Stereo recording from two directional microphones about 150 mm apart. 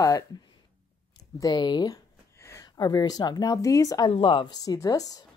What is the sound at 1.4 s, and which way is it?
Speech, 25° left (ahead or behind).